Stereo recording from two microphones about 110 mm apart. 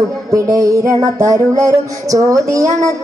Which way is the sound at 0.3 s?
30° right (ahead or behind).